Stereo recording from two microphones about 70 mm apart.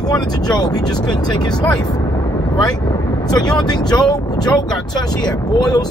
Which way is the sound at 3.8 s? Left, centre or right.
Left.